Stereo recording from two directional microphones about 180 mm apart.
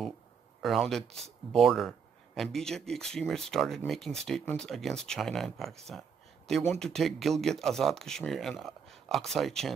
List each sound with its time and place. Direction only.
0.6 s speech: centre (ahead or behind)